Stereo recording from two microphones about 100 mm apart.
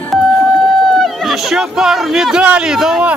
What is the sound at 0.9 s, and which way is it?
Speech, centre (ahead or behind).